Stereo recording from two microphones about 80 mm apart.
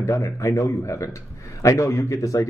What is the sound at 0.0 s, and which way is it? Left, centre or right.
Speech, left.